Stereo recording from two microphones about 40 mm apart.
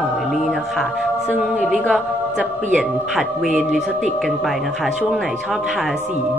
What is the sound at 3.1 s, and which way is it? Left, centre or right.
A woman's voice, centre.